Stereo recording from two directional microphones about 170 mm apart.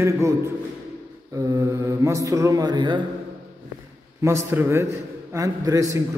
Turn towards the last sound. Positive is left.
turn(degrees=-20)  # may be behind; listen again after turning